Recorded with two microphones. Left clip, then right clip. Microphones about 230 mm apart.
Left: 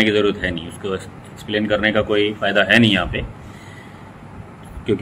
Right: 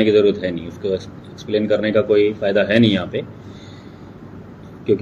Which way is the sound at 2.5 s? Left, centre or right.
Left.